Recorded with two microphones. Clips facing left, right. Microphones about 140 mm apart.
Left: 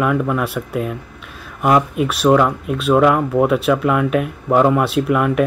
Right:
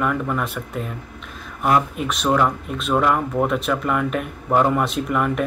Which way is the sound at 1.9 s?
5° left (ahead or behind).